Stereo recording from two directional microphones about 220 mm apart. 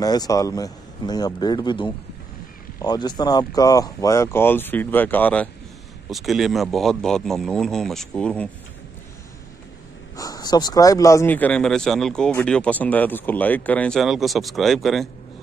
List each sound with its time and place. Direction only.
0.0 s a man's voice: 15° left (ahead or behind)
10.1 s speech: 15° left (ahead or behind); by 15.0 s centre (ahead or behind)